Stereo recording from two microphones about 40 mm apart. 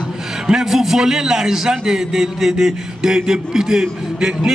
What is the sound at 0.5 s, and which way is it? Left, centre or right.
A man's voice, centre.